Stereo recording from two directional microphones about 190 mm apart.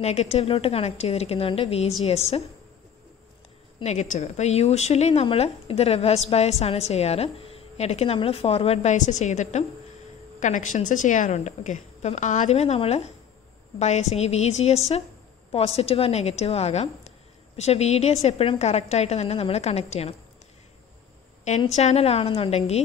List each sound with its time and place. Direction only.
0.0 s a woman's voice: 35° left (ahead or behind)
3.8 s a woman's voice: 40° left (ahead or behind)
21.6 s a woman's voice: 35° left (ahead or behind)